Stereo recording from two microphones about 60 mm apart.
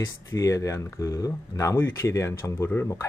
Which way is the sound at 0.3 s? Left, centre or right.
Left.